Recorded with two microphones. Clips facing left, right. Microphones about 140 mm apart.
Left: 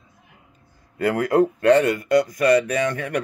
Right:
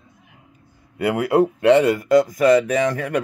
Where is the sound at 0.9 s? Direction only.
10° right (ahead or behind).